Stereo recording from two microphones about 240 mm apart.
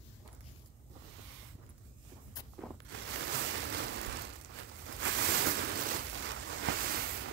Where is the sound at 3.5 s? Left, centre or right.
Right.